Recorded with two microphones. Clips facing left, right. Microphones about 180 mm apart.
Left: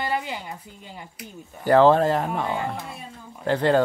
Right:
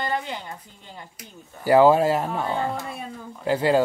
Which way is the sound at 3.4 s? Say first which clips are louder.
Even; 5° right (ahead or behind).